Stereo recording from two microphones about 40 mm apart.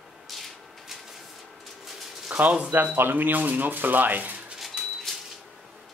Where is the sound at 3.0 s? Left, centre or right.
Right.